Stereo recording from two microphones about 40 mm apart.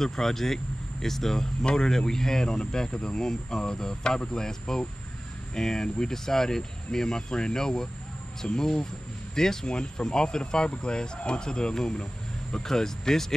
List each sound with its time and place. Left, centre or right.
0.0 s speech: centre